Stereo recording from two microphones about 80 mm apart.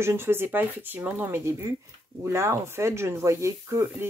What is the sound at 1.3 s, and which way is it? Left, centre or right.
Speech, right.